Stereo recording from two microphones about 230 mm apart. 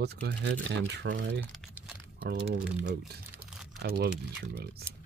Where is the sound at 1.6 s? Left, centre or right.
Centre.